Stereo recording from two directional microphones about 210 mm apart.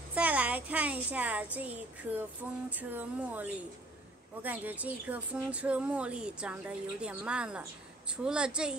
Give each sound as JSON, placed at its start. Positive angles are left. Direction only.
{"t": 0.1, "sound": "a child's voice", "side_deg": -5}